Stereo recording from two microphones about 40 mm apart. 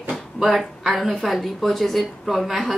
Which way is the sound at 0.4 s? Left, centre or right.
Centre.